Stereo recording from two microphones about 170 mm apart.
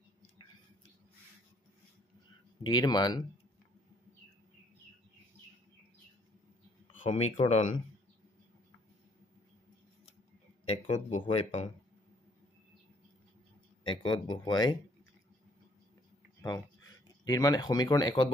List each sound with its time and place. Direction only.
2.6 s speech: 25° left (ahead or behind)
7.0 s speech: 40° left (ahead or behind)
10.7 s speech: 40° left (ahead or behind)
13.8 s speech: 25° left (ahead or behind)
16.3 s speech: 20° left (ahead or behind)